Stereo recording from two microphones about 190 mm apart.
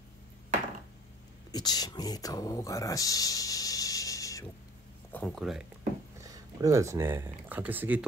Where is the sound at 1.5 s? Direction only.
20° left (ahead or behind).